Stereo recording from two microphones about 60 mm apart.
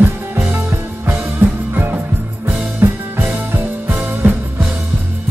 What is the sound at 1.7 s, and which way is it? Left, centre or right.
Music, right.